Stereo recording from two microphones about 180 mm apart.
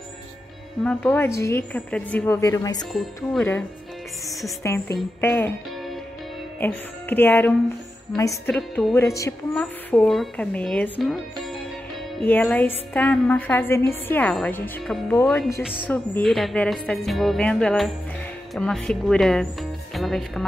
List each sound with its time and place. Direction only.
0.8 s a woman's voice: 10° left (ahead or behind)
4.6 s a woman's voice: 15° left (ahead or behind)
6.6 s a woman's voice: 10° left (ahead or behind)
8.5 s speech: 5° left (ahead or behind)
9.0 s a woman's voice: 15° left (ahead or behind)
9.5 s speech: 5° left (ahead or behind)
12.3 s a woman's voice: 10° left (ahead or behind)
15.9 s speech: 5° left (ahead or behind)